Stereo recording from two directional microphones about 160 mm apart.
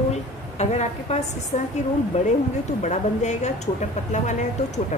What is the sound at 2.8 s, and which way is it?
Speech, 45° left (ahead or behind).